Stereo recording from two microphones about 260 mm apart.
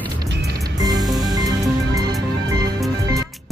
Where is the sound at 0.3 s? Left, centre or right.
Right.